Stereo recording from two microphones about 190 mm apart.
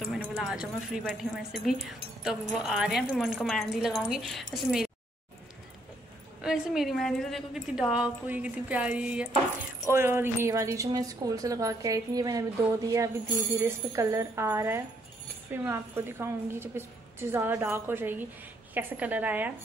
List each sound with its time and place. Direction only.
0.0 s a woman's voice: 5° right (ahead or behind)
6.4 s a woman's voice: 5° right (ahead or behind)